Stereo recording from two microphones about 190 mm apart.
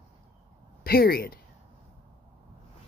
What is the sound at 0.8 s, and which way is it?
Speech, 55° left (ahead or behind).